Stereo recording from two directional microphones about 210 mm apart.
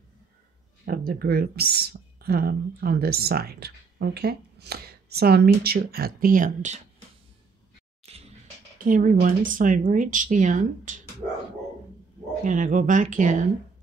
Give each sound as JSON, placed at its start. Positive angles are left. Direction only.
{"t": 0.8, "sound": "speech", "side_deg": -45}
{"t": 8.0, "sound": "music", "side_deg": -30}
{"t": 8.7, "sound": "speech", "side_deg": -40}
{"t": 12.4, "sound": "speech", "side_deg": -35}